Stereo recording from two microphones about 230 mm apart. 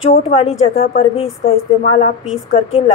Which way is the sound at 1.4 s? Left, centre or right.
Left.